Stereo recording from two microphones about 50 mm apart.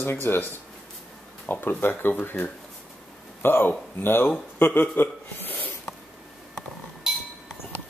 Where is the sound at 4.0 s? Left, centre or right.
Left.